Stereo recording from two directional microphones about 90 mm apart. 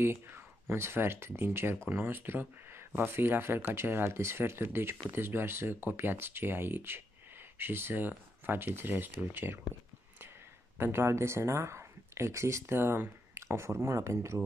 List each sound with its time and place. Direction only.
0.0 s speech: 25° right (ahead or behind)
10.8 s speech: 25° right (ahead or behind)